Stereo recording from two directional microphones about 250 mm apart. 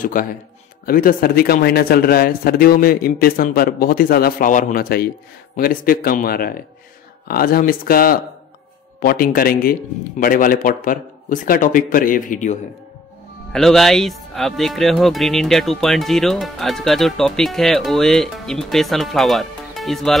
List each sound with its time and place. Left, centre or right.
0.0 s speech: left
13.5 s speech: centre